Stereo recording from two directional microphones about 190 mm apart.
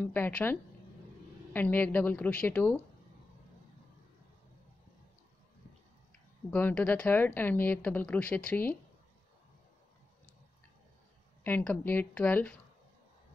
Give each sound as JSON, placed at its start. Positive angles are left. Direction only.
{"t": 0.0, "sound": "speech", "side_deg": 10}
{"t": 6.5, "sound": "speech", "side_deg": 5}
{"t": 11.4, "sound": "speech", "side_deg": 10}